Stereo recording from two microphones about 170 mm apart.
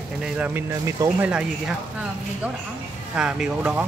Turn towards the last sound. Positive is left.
turn(degrees=-5)  # may be behind; listen again after turning